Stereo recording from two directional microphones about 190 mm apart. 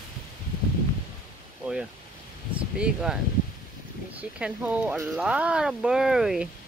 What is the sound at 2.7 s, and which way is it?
Speech, 5° right (ahead or behind).